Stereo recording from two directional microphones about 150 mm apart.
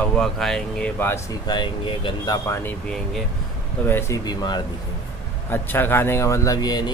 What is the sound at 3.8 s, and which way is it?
Speech, 15° left (ahead or behind).